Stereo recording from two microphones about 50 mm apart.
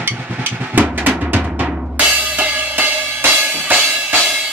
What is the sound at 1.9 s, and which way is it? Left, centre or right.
Drum kit, right.